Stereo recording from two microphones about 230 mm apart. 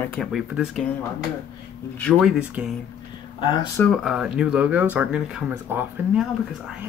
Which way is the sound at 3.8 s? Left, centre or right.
Centre.